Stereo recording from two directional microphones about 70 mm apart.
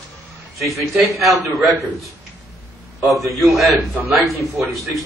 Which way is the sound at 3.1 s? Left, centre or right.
Centre.